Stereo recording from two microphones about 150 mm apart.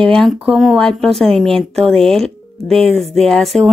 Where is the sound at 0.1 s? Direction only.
5° left (ahead or behind).